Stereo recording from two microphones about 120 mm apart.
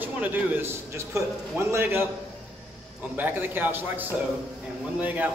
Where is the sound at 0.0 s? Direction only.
15° right (ahead or behind).